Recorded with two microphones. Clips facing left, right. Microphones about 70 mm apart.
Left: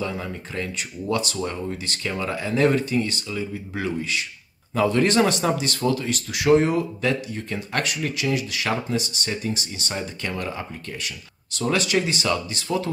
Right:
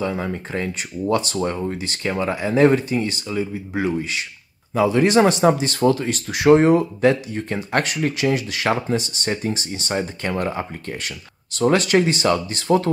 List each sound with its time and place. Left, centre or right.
0.0 s speech: right